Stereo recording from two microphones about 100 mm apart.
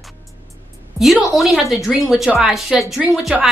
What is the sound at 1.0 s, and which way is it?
A woman's voice, centre (ahead or behind).